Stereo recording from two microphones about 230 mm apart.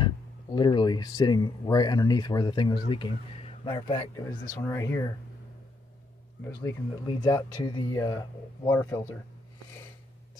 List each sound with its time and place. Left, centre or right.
0.0 s a man's voice: centre
6.4 s speech: centre